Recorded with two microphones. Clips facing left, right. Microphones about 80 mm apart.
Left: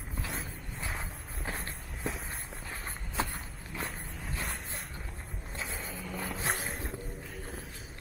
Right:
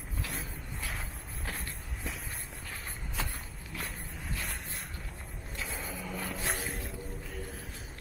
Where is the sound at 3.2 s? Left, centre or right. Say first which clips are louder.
Left 5 dB; left.